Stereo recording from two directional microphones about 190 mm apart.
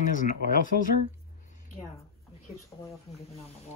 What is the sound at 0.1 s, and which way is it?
Speech, 45° left (ahead or behind).